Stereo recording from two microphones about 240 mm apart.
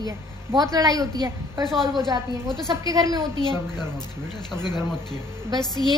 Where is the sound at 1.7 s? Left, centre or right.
Centre.